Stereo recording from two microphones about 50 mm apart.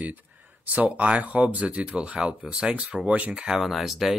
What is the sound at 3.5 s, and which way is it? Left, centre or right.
Speech, centre.